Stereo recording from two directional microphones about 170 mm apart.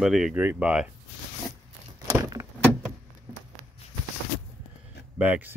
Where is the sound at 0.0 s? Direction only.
5° right (ahead or behind).